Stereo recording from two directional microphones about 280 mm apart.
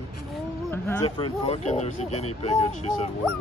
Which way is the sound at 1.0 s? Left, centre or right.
Centre.